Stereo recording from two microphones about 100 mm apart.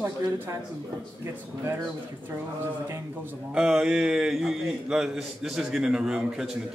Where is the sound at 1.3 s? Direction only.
20° right (ahead or behind).